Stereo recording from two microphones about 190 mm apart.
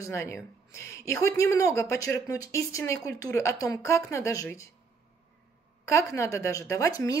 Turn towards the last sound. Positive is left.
turn(degrees=15)  # may be behind; listen again after turning